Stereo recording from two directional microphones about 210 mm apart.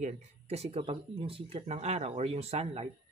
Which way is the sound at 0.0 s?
30° right (ahead or behind).